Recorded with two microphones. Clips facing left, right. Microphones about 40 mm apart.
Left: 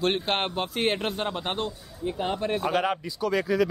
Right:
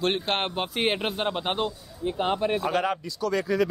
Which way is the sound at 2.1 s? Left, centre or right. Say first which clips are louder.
Right 3 dB; right.